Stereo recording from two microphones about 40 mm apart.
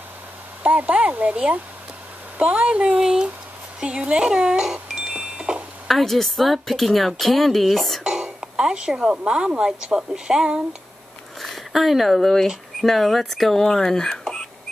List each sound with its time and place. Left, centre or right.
0.7 s speech: right
3.0 s speech: centre
5.0 s wind chime: centre
5.9 s a woman's voice: centre
8.0 s speech: centre
11.4 s speech: centre